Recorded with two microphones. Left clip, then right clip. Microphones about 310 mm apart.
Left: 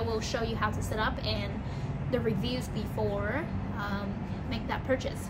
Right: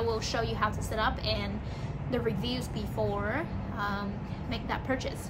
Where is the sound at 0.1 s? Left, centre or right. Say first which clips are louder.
Right 1 dB; centre.